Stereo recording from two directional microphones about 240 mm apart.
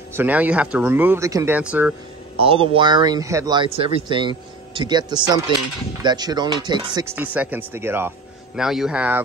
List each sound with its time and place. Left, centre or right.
0.1 s speech: centre
2.3 s speech: right
7.2 s speech: centre